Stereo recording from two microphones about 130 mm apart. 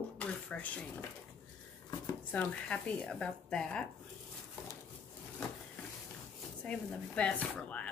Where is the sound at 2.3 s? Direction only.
10° left (ahead or behind).